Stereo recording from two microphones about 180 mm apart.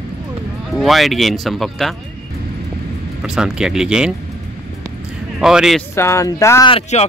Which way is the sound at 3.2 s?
5° right (ahead or behind).